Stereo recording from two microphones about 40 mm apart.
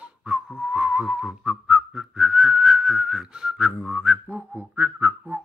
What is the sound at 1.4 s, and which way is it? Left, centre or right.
Whistle, centre.